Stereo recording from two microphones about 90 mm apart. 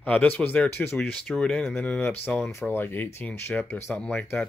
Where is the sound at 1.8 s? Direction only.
15° left (ahead or behind).